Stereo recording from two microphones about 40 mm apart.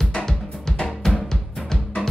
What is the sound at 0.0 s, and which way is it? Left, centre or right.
Drum, centre.